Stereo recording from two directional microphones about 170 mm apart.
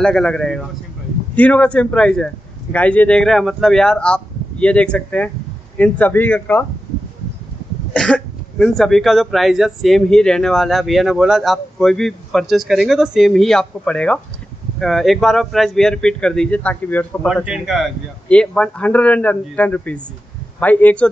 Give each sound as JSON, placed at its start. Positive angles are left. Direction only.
{"t": 0.0, "sound": "speech", "side_deg": 5}
{"t": 7.9, "sound": "speech", "side_deg": 5}
{"t": 17.5, "sound": "speech", "side_deg": 0}